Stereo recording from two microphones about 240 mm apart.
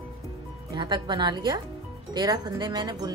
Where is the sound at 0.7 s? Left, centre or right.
Centre.